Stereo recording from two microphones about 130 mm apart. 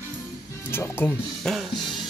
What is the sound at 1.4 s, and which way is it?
Music, centre (ahead or behind).